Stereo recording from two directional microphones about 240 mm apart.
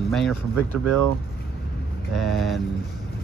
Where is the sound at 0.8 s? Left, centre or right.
Right.